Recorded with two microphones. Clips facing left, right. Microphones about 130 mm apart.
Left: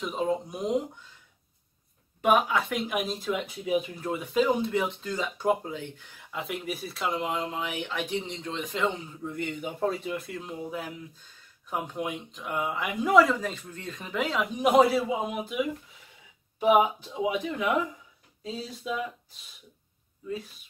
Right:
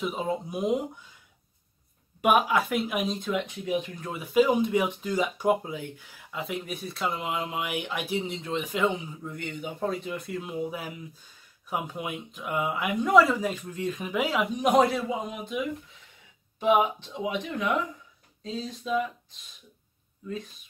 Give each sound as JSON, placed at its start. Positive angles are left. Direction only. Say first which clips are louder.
{"t": 0.0, "sound": "a man's voice", "louder": "left 1 dB", "side_deg": -5}
{"t": 2.2, "sound": "speech", "louder": "right 1 dB", "side_deg": -10}
{"t": 9.2, "sound": "a man's voice", "louder": "left 2 dB", "side_deg": 0}
{"t": 13.4, "sound": "speech", "louder": "right 5 dB", "side_deg": -10}
{"t": 14.6, "sound": "a man's voice", "louder": "left 2 dB", "side_deg": 5}
{"t": 20.2, "sound": "a man's voice", "louder": "left 1 dB", "side_deg": 5}